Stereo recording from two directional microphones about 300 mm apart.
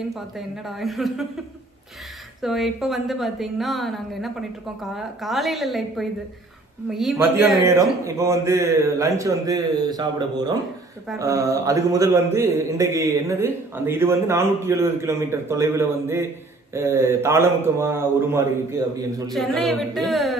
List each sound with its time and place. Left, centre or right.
0.1 s a woman's voice: centre
2.4 s a woman's voice: centre